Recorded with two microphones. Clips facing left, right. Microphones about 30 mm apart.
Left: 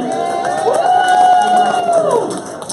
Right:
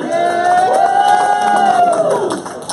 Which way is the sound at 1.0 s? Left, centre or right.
Right.